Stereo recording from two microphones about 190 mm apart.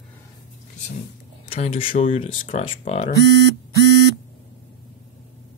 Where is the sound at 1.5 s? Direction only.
35° left (ahead or behind).